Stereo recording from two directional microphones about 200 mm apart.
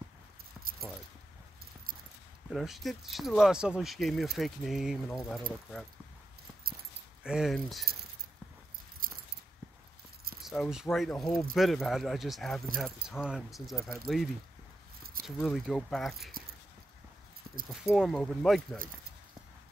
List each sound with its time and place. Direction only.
0.6 s keys jangling: 5° right (ahead or behind)
2.5 s speech: centre (ahead or behind)
7.2 s speech: centre (ahead or behind)
9.0 s keys jangling: 45° right (ahead or behind)
10.4 s speech: centre (ahead or behind)
17.6 s speech: centre (ahead or behind)